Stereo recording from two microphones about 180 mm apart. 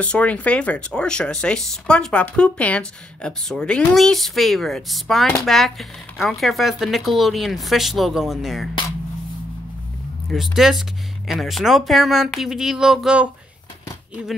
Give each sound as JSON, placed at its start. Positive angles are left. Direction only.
{"t": 0.0, "sound": "speech", "side_deg": 5}
{"t": 10.3, "sound": "speech", "side_deg": 0}